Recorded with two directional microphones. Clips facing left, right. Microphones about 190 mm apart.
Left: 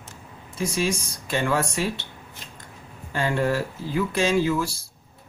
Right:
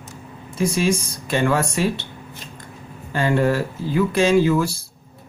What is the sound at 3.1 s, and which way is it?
Speech, 65° right (ahead or behind).